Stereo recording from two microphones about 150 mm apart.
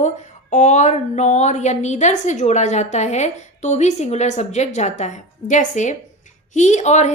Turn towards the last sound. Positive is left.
turn(degrees=50)  # may be behind; listen again after turning